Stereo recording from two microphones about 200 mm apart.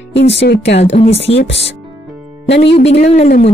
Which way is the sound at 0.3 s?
60° left (ahead or behind).